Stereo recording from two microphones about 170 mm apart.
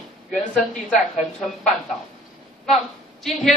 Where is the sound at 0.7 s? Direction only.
Centre (ahead or behind).